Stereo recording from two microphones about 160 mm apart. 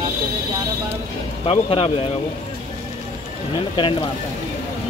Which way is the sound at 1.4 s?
35° left (ahead or behind).